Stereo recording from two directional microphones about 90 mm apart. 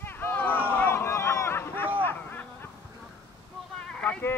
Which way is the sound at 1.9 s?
25° left (ahead or behind).